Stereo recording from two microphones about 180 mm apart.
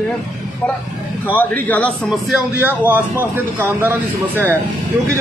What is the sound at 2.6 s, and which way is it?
A man's voice, 10° right (ahead or behind).